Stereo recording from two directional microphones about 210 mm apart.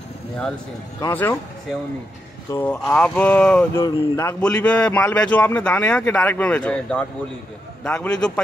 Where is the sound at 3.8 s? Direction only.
15° left (ahead or behind).